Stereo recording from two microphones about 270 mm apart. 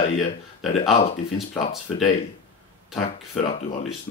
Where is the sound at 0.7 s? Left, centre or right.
Left.